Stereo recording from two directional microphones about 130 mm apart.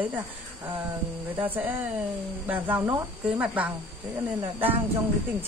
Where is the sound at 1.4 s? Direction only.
15° right (ahead or behind).